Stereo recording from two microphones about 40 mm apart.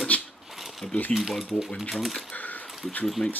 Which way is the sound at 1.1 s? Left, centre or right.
Centre.